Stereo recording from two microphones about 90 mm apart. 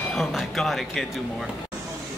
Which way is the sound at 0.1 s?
5° left (ahead or behind).